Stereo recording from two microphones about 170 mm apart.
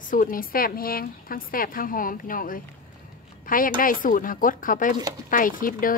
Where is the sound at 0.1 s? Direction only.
55° left (ahead or behind).